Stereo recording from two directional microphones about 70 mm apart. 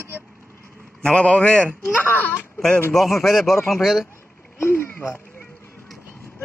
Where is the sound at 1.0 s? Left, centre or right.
Centre.